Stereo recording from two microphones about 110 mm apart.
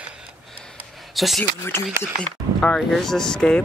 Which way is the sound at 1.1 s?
Centre (ahead or behind).